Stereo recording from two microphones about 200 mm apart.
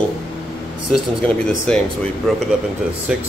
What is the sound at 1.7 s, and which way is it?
A man's voice, 5° left (ahead or behind).